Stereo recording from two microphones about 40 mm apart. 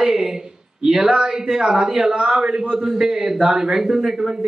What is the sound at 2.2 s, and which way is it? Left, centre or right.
Speech, right.